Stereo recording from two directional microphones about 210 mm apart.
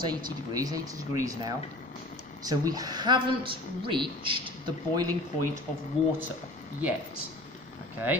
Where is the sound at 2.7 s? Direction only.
20° right (ahead or behind).